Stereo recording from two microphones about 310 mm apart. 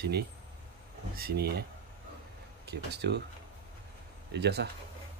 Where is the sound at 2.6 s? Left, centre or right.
Right.